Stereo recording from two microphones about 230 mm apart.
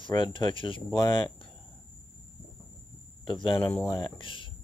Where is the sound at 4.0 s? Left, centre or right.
Left.